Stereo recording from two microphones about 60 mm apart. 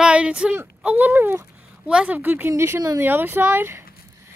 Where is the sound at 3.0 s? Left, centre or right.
Right.